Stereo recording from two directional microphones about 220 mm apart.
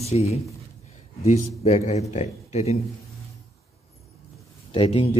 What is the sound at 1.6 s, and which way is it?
A man's voice, 30° left (ahead or behind).